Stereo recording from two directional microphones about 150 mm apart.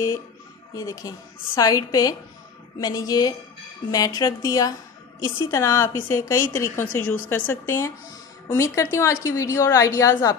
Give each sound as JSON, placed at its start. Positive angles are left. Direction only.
{"t": 0.7, "sound": "a woman's voice", "side_deg": 25}